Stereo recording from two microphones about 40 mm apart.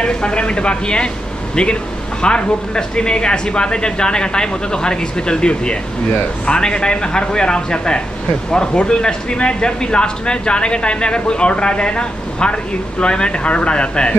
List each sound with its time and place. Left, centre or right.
0.0 s speech: left